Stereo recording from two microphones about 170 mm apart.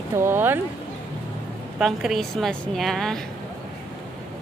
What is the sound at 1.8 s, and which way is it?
A woman's voice, centre (ahead or behind).